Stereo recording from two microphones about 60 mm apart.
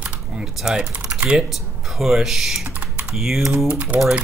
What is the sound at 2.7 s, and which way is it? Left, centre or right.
Typing, right.